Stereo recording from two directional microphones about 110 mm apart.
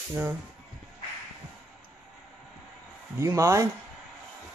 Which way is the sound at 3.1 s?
25° right (ahead or behind).